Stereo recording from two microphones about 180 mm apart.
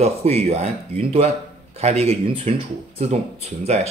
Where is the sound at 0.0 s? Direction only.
35° right (ahead or behind).